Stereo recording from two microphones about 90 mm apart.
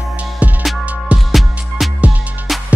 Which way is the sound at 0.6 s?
Centre (ahead or behind).